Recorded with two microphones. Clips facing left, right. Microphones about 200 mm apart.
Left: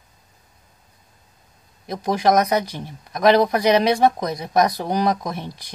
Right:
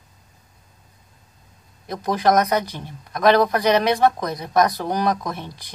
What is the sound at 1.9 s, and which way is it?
Speech, 15° left (ahead or behind).